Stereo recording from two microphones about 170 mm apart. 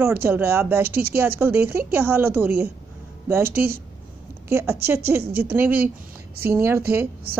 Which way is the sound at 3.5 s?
65° right (ahead or behind).